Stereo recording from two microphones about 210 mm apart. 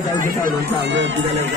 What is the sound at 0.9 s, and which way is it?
Speech, 60° right (ahead or behind).